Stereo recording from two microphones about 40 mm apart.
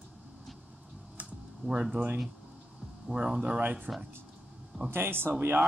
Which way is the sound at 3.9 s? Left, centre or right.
Centre.